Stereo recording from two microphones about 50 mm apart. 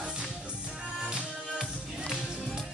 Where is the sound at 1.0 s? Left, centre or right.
Centre.